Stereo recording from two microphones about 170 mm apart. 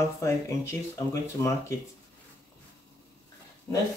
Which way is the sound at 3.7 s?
20° left (ahead or behind).